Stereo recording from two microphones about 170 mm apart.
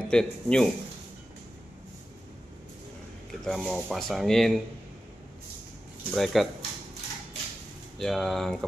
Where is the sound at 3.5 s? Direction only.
5° left (ahead or behind).